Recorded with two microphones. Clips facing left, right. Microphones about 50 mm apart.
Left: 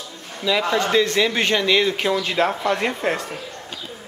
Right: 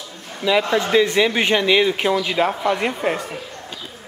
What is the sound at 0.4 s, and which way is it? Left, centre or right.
Speech, centre.